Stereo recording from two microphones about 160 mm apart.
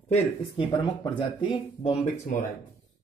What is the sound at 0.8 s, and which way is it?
Speech, 25° left (ahead or behind).